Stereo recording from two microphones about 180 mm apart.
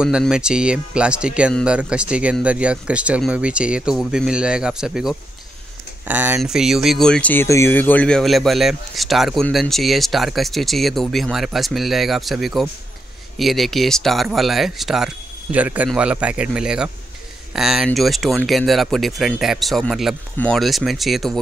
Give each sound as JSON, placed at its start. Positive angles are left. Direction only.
{"t": 0.0, "sound": "speech", "side_deg": -5}